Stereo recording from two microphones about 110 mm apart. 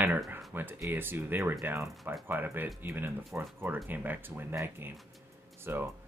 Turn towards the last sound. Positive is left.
turn(degrees=-20)  # may be behind; listen again after turning